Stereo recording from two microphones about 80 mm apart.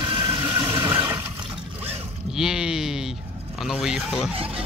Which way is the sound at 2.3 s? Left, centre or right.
Centre.